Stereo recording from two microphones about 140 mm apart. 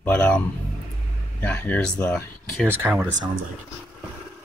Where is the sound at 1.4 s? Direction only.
10° left (ahead or behind).